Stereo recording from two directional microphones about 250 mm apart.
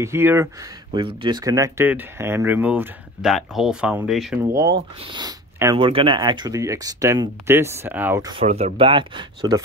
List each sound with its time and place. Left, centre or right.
0.0 s speech: centre
4.5 s speech: centre